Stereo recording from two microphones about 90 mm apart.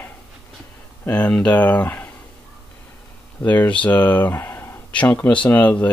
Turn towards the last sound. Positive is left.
turn(degrees=20)  # may be behind; listen again after turning